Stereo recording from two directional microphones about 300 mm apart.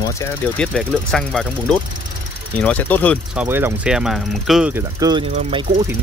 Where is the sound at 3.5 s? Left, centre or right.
Centre.